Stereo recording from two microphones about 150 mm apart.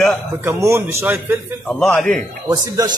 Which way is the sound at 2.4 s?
25° right (ahead or behind).